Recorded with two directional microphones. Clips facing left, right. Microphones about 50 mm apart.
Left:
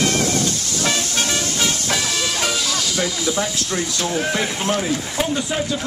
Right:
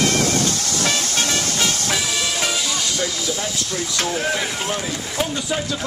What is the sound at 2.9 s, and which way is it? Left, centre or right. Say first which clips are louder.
Speech: left 2 dB; centre.